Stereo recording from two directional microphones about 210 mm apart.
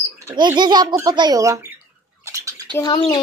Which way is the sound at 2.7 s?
20° left (ahead or behind).